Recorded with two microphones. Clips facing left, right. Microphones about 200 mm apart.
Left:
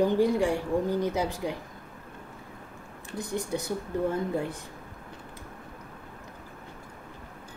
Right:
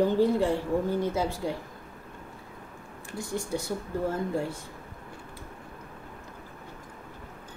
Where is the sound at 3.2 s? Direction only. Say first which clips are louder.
Left 1 dB; 20° left (ahead or behind).